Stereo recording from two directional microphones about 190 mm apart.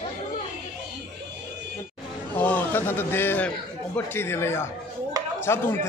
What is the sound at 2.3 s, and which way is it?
A man's voice, 10° left (ahead or behind).